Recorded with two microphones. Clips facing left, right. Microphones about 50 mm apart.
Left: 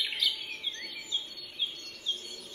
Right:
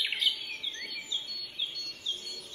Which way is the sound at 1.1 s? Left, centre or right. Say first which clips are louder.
Left 1 dB; left.